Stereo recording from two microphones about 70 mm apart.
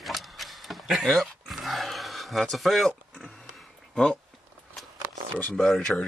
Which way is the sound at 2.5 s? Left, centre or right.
Centre.